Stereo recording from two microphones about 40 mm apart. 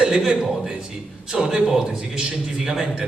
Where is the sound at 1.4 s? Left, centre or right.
Centre.